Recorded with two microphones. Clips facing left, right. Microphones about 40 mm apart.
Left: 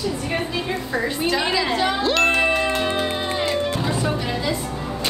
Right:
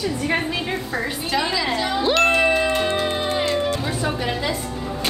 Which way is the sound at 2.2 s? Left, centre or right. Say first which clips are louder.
Right 2 dB; centre.